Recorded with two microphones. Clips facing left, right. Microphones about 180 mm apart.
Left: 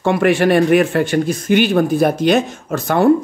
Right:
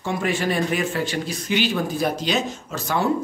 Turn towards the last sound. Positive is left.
turn(degrees=55)  # may be behind; listen again after turning